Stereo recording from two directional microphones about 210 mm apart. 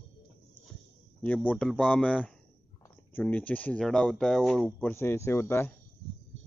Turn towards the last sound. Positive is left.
turn(degrees=10)  # may be behind; listen again after turning